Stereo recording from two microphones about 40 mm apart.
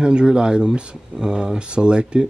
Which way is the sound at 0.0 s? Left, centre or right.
Right.